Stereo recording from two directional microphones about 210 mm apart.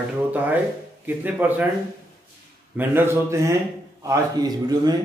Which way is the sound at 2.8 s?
10° right (ahead or behind).